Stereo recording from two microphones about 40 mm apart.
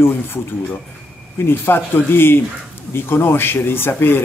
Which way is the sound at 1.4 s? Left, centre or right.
Left.